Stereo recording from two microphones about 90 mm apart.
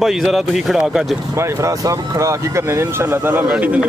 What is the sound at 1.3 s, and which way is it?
Speech, 35° right (ahead or behind).